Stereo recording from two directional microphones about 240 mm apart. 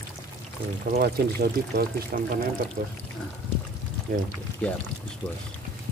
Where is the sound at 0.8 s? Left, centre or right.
Right.